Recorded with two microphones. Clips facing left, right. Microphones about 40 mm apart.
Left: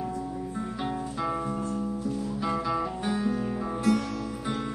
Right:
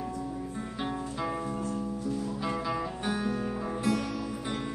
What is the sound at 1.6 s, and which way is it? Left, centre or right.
Music, centre.